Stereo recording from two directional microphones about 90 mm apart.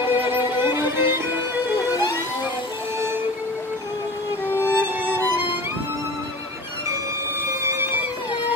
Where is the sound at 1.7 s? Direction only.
40° left (ahead or behind).